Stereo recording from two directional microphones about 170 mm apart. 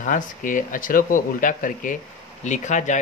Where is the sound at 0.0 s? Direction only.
50° left (ahead or behind).